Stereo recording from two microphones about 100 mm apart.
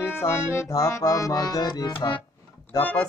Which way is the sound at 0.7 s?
35° left (ahead or behind).